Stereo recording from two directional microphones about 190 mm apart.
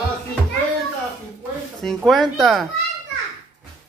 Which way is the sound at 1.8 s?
Centre (ahead or behind).